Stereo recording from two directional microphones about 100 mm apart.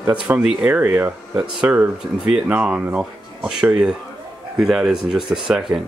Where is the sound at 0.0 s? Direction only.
15° right (ahead or behind).